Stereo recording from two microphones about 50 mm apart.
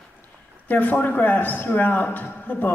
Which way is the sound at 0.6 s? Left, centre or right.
Left.